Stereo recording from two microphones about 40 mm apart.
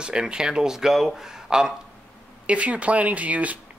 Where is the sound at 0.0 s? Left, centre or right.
Right.